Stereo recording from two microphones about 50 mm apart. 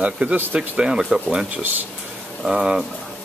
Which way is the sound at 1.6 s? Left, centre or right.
Right.